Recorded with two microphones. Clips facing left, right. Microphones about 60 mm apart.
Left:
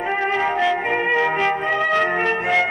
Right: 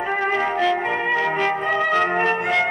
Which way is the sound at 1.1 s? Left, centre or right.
Centre.